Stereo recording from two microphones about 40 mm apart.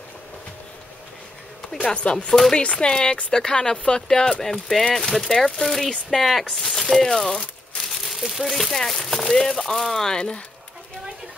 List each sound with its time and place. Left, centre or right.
1.7 s speech: centre
2.5 s speech: left
4.3 s speech: centre
6.4 s speech: centre